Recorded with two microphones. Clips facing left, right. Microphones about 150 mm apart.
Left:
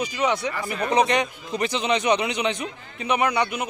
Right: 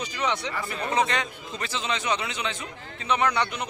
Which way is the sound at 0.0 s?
10° left (ahead or behind).